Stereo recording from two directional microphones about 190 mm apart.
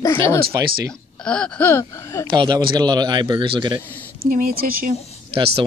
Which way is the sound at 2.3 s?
25° right (ahead or behind).